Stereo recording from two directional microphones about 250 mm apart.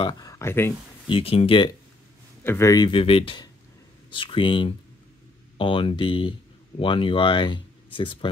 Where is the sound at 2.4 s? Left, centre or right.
Centre.